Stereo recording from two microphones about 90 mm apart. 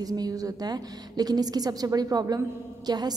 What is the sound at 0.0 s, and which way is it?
A woman's voice, 45° right (ahead or behind).